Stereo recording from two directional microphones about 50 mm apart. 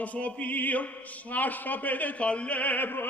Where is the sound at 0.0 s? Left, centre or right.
Left.